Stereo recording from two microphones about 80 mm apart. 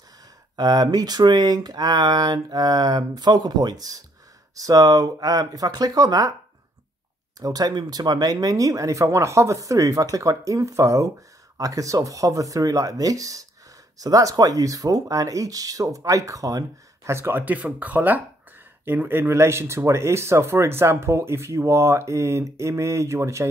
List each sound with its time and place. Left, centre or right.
0.6 s speech: right
7.3 s speech: right
17.1 s speech: right